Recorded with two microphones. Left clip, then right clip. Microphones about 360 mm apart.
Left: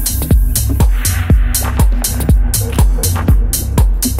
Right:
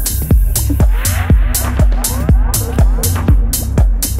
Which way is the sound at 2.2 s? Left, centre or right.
Centre.